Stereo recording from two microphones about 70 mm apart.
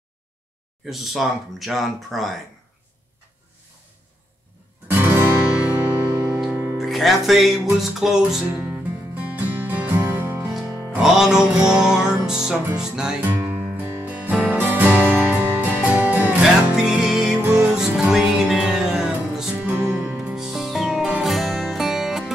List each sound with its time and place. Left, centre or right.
0.8 s speech: centre
4.8 s guitar: right
5.6 s music: right
6.0 s music: right
6.8 s music: centre
8.5 s music: right
11.0 s music: centre
13.2 s music: right
16.7 s music: centre
17.4 s music: centre
19.5 s music: right
20.3 s music: centre